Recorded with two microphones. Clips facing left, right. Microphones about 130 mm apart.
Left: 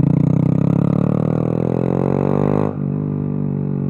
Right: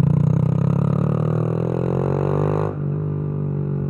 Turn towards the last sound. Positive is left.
turn(degrees=60)  # may be behind; listen again after turning